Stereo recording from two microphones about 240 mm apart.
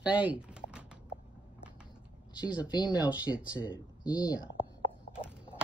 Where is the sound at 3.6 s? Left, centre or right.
Centre.